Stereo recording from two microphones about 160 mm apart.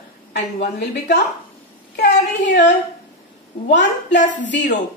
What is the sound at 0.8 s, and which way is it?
A woman's voice, 90° left.